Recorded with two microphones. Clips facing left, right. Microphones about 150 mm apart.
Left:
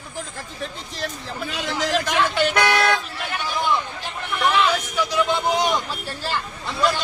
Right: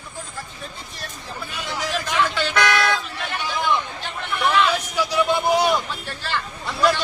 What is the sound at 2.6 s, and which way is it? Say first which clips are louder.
Vehicle: left 1 dB; 40° left (ahead or behind).